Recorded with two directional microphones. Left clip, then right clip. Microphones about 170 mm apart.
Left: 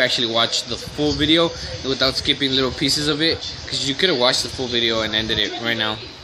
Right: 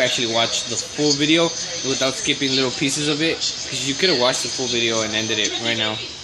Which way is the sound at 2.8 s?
60° left (ahead or behind).